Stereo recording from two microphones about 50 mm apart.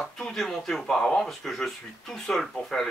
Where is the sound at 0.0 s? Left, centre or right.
Centre.